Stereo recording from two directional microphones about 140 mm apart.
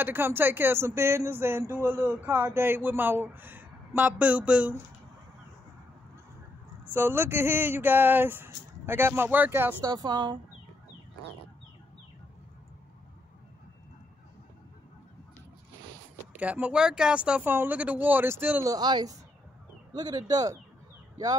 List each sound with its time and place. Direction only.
0.0 s speech: 15° right (ahead or behind)
6.9 s speech: 15° right (ahead or behind)
9.8 s speech: 30° right (ahead or behind)
16.3 s speech: 10° right (ahead or behind)
18.7 s speech: 30° right (ahead or behind)